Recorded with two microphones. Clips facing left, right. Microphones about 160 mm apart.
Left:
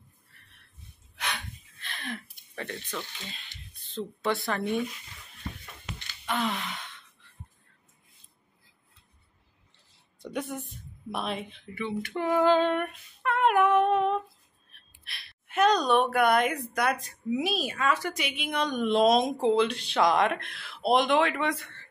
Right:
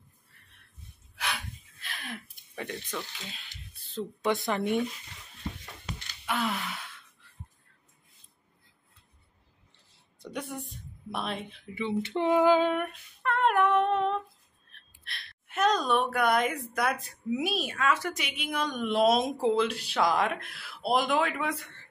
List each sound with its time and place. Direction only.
1.1 s a sound: 5° right (ahead or behind)
4.2 s speech: 20° right (ahead or behind)
6.2 s gasp: 5° right (ahead or behind)
10.2 s a woman's voice: centre (ahead or behind)
11.7 s a sound: 20° right (ahead or behind); by 17.4 s centre (ahead or behind)
17.5 s a woman's voice: centre (ahead or behind)